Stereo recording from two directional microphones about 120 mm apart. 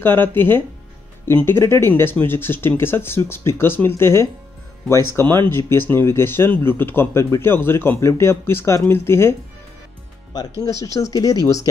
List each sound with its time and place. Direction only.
0.0 s a man's voice: 15° left (ahead or behind)
10.8 s a man's voice: 30° left (ahead or behind)